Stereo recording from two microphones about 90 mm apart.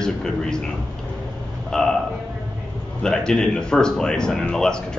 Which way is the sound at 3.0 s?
5° left (ahead or behind).